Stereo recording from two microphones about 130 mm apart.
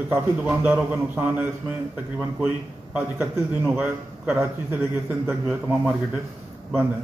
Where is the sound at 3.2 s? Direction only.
20° right (ahead or behind).